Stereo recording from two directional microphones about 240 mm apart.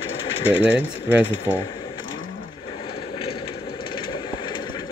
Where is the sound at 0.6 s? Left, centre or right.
Left.